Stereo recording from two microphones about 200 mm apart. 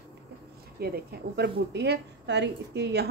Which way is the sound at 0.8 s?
50° right (ahead or behind).